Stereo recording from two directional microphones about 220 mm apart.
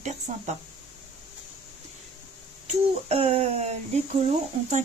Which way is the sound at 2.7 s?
30° right (ahead or behind).